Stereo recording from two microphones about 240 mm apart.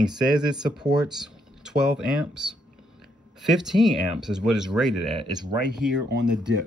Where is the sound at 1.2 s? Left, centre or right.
Centre.